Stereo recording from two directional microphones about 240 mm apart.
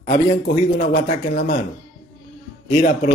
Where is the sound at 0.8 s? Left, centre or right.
Left.